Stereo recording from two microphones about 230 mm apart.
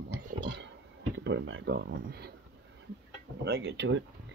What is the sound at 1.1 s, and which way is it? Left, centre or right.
Speech, right.